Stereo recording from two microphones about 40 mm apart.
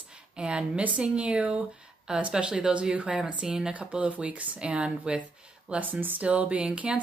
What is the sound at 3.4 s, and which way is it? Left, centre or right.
Speech, centre.